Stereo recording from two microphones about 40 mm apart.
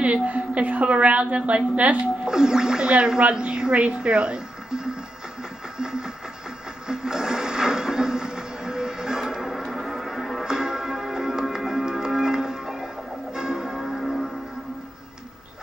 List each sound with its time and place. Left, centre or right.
0.0 s a woman's voice: right
2.2 s speech: centre
5.8 s music: centre
6.9 s television: centre
9.3 s music: centre
13.3 s church bell: centre